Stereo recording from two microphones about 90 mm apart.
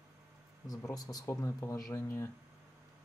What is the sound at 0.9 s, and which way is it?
Speech, 40° left (ahead or behind).